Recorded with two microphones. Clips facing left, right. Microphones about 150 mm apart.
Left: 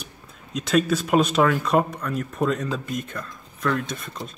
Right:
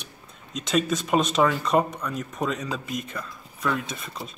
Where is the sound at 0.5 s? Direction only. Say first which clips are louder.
Left 3 dB; 5° left (ahead or behind).